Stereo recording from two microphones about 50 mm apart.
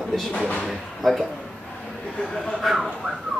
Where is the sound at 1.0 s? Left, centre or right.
Centre.